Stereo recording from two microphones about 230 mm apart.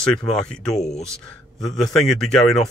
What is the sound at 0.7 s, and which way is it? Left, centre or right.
Speech, left.